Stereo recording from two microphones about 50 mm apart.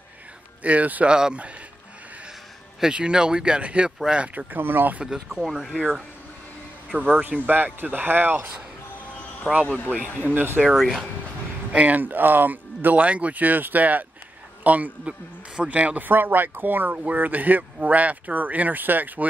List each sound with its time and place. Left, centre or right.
0.7 s speech: right
1.0 s speech: centre
2.8 s speech: centre
4.5 s speech: right
5.0 s speech: centre
7.0 s speech: right
9.8 s speech: right
10.7 s speech: centre
11.7 s speech: right
16.1 s speech: right